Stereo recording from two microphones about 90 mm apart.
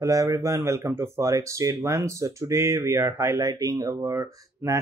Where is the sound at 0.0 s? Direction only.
40° right (ahead or behind).